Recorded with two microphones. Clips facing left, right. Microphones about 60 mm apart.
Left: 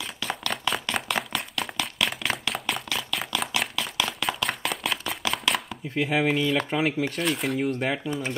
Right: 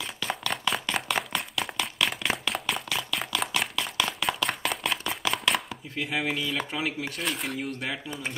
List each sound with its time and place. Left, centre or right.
0.0 s a sound: centre
5.9 s speech: centre
7.6 s speech: centre
8.1 s speech: centre